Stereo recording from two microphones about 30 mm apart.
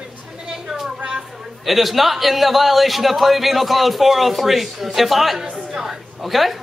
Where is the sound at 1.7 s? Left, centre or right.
Centre.